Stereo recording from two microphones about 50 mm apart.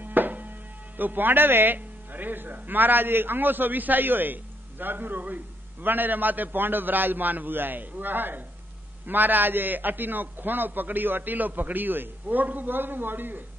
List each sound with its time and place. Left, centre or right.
0.0 s music: right
0.9 s a man's voice: right